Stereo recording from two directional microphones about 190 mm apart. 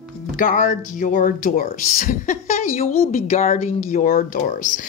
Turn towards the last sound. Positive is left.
turn(degrees=45)  # may be behind; listen again after turning